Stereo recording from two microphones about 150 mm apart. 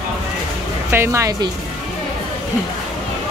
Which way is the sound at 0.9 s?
20° right (ahead or behind).